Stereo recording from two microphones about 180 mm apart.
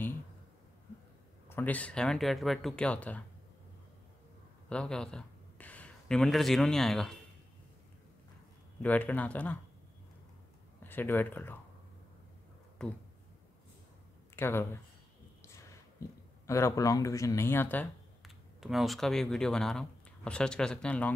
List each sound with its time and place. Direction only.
1.5 s speech: 10° left (ahead or behind)
4.6 s speech: 5° left (ahead or behind)
8.8 s speech: 10° left (ahead or behind)
10.8 s speech: 10° left (ahead or behind)
12.8 s speech: 5° left (ahead or behind)
14.3 s speech: 15° left (ahead or behind)
16.4 s speech: 15° left (ahead or behind)
18.2 s speech: centre (ahead or behind)